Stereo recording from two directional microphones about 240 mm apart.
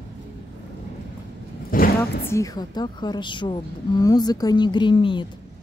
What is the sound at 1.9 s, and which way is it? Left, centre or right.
A woman's voice, centre.